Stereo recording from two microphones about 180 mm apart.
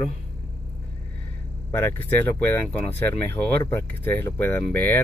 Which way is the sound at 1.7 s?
15° left (ahead or behind).